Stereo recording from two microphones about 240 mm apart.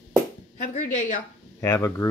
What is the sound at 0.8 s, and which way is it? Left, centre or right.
Speech, left.